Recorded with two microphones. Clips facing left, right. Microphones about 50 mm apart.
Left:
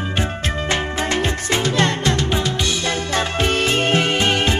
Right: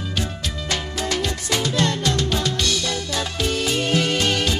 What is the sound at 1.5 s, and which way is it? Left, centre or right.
Music, left.